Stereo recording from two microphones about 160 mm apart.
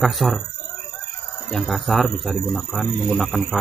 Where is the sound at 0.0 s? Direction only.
Centre (ahead or behind).